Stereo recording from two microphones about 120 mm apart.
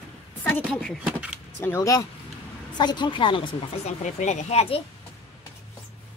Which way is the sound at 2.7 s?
40° left (ahead or behind).